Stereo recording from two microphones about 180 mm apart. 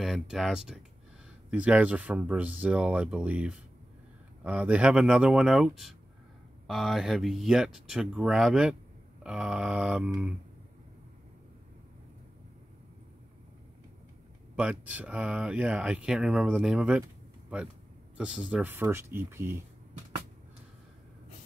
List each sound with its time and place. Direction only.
0.0 s speech: centre (ahead or behind)
14.5 s speech: 10° right (ahead or behind)
18.1 s speech: 5° right (ahead or behind)